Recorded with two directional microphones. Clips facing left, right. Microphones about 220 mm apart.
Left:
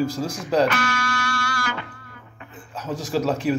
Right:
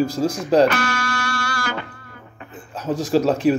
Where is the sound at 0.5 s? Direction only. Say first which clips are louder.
Right 4 dB; 35° right (ahead or behind).